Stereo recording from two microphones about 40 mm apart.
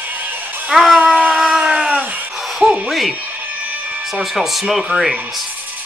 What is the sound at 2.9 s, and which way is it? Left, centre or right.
Speech, centre.